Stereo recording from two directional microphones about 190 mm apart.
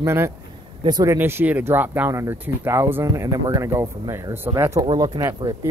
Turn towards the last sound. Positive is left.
turn(degrees=-20)  # may be behind; listen again after turning